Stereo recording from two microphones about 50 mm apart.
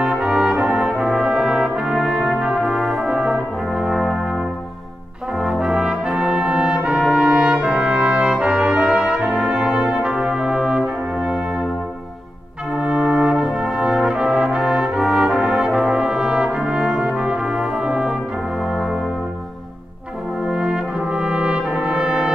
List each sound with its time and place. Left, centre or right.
0.0 s brass instrument: centre
5.6 s brass instrument: centre
12.7 s brass instrument: centre
20.4 s brass instrument: centre